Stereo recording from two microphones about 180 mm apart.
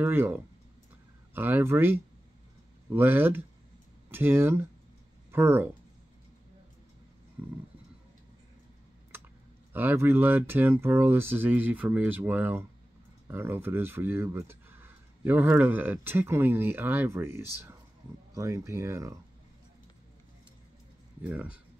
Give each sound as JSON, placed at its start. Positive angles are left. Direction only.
{"t": 0.0, "sound": "speech", "side_deg": -10}
{"t": 9.7, "sound": "speech", "side_deg": -10}
{"t": 21.2, "sound": "speech", "side_deg": -10}